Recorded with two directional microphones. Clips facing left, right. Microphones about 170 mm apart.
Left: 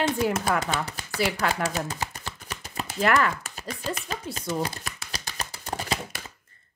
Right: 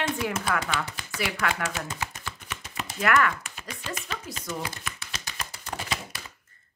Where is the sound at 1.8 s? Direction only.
35° left (ahead or behind).